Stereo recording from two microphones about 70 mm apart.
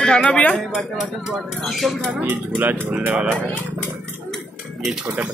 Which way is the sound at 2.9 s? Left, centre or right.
Centre.